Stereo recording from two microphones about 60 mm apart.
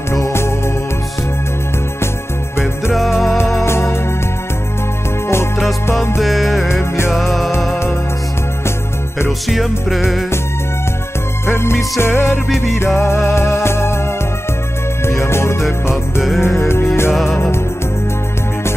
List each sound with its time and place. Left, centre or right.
0.1 s music: left
2.6 s music: centre
3.3 s music: left
6.2 s music: centre
6.7 s music: left
9.5 s music: centre
11.4 s music: left
15.2 s music: left